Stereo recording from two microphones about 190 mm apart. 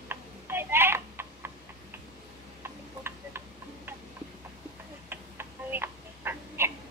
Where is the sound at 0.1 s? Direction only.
10° right (ahead or behind).